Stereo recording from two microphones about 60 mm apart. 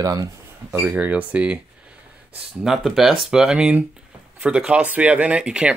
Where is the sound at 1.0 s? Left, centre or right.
Right.